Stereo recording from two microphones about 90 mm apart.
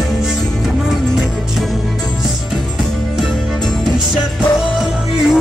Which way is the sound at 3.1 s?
Centre (ahead or behind).